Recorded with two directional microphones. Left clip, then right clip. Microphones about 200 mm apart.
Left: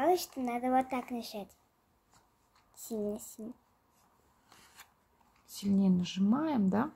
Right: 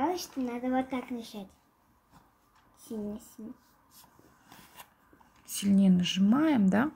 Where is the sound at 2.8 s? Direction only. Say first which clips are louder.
Left 3 dB; 70° left (ahead or behind).